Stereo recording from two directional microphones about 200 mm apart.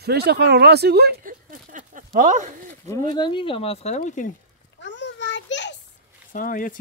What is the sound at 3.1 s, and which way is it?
Speech, 25° left (ahead or behind).